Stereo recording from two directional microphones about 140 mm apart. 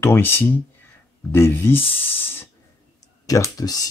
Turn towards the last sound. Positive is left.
turn(degrees=25)  # may be behind; listen again after turning